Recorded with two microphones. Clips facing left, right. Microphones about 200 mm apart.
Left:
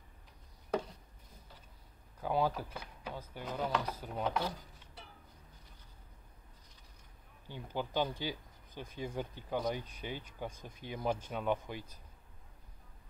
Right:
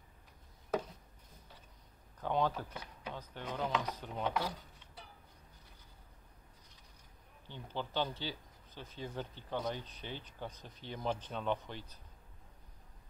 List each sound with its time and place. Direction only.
2.1 s speech: 10° left (ahead or behind)
7.4 s speech: 10° left (ahead or behind)